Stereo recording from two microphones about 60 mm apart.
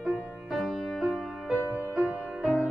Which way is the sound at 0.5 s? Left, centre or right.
Centre.